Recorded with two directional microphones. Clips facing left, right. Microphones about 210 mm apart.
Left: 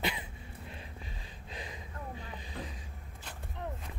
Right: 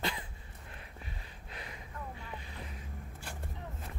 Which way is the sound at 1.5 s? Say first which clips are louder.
Left 3 dB; 20° left (ahead or behind).